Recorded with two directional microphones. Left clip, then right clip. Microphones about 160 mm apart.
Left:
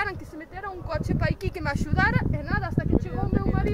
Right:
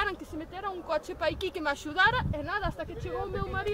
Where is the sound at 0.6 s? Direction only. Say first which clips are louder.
Even; 15° left (ahead or behind).